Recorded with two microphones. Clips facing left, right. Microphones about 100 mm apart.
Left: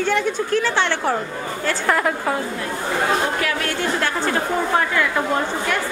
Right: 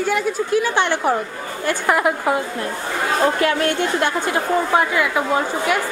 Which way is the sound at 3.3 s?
25° right (ahead or behind).